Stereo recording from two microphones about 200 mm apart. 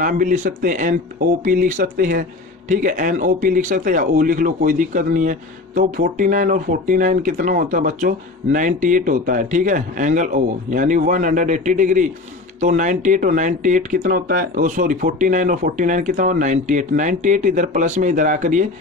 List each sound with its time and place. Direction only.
0.0 s speech: 40° right (ahead or behind)